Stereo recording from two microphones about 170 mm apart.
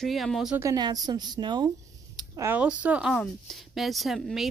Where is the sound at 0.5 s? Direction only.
20° right (ahead or behind); by 4.4 s centre (ahead or behind).